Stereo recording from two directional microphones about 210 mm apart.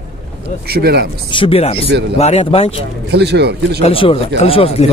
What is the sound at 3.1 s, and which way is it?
Speech, 50° right (ahead or behind).